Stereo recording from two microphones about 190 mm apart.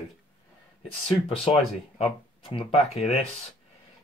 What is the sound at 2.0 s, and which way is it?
Speech, 30° left (ahead or behind).